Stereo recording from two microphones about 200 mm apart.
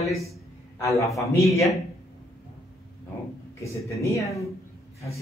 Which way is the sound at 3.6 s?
15° left (ahead or behind).